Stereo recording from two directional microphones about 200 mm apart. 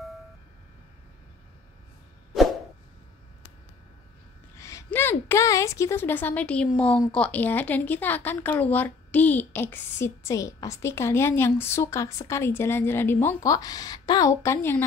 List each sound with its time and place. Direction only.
4.6 s a woman's voice: 15° left (ahead or behind)